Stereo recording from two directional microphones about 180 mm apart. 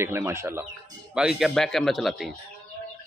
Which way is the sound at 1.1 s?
Centre (ahead or behind).